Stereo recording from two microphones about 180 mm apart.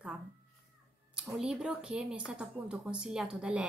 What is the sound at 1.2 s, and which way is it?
A woman's voice, 5° right (ahead or behind).